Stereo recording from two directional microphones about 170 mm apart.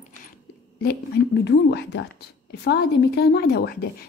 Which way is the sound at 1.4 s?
90° left.